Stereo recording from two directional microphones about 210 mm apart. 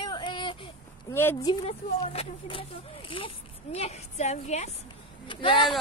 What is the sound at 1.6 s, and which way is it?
A child's voice, 30° left (ahead or behind).